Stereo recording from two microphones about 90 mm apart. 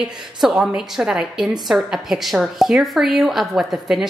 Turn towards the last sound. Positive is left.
turn(degrees=-5)  # may be behind; listen again after turning